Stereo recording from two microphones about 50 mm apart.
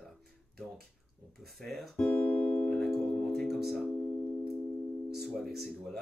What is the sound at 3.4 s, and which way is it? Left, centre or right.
Speech, centre.